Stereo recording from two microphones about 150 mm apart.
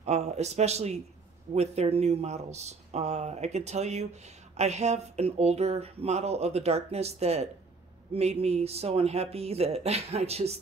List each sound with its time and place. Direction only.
0.0 s speech: 45° right (ahead or behind)